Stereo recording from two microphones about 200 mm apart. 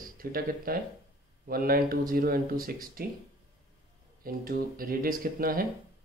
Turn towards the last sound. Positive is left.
turn(degrees=-45)  # may be behind; listen again after turning